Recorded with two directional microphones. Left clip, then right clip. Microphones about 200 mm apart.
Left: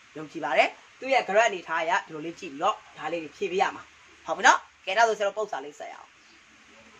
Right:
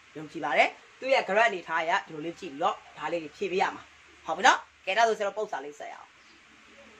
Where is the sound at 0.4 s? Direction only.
10° left (ahead or behind).